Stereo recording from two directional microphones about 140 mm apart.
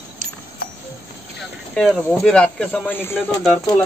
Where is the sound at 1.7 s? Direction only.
5° left (ahead or behind).